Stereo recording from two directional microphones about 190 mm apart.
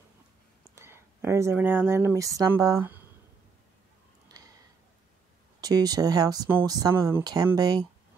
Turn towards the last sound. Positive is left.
turn(degrees=-20)  # may be behind; listen again after turning